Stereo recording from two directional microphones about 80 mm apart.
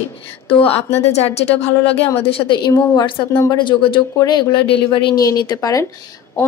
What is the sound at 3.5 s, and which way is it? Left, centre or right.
Speech, left.